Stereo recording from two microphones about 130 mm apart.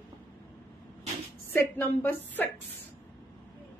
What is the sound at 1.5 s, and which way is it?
Speech, 15° left (ahead or behind).